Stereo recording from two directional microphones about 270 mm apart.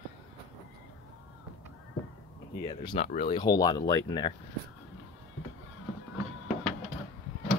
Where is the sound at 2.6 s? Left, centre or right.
Centre.